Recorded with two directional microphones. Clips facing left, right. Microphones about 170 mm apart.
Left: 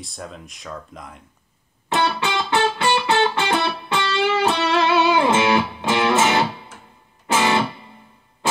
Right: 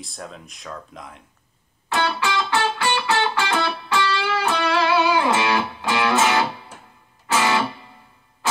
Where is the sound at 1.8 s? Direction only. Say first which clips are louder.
Left 2 dB; 25° left (ahead or behind).